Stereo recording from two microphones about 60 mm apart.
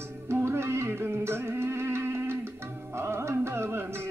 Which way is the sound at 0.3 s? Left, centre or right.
Right.